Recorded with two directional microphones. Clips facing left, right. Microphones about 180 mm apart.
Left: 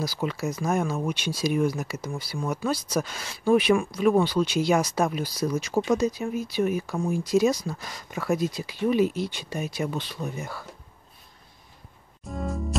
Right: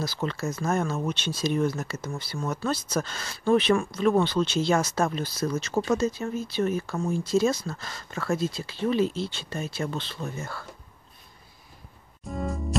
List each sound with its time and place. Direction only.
0.0 s speech: 10° left (ahead or behind)
12.3 s music: centre (ahead or behind)